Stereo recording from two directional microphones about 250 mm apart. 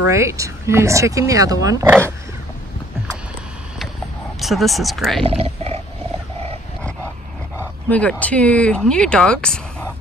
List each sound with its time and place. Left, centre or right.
0.1 s speech: centre
4.4 s speech: centre
5.2 s wild animals: right
7.9 s speech: centre